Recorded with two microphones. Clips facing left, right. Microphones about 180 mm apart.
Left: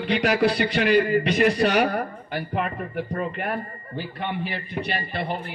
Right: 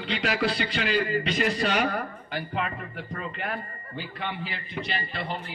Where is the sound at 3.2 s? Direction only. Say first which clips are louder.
Left 3 dB; 55° left (ahead or behind).